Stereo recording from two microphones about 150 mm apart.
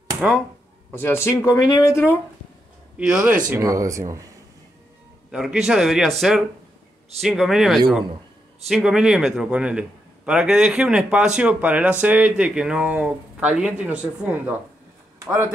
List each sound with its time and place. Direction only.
0.9 s speech: 15° left (ahead or behind)
3.0 s a man's voice: 5° right (ahead or behind)
3.6 s speech: 20° right (ahead or behind)
5.3 s a man's voice: 5° right (ahead or behind)